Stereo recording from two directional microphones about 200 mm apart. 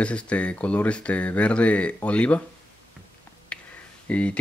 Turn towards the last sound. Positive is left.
turn(degrees=5)  # may be behind; listen again after turning